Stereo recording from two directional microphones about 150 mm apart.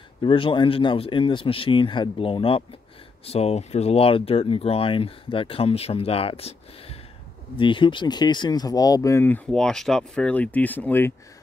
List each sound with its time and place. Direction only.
0.2 s speech: 35° left (ahead or behind); by 11.1 s 15° left (ahead or behind)